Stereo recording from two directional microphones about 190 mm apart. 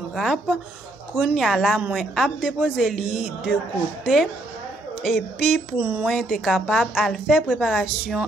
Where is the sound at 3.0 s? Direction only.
30° left (ahead or behind).